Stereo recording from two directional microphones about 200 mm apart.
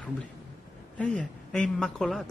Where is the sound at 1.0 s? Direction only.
5° left (ahead or behind).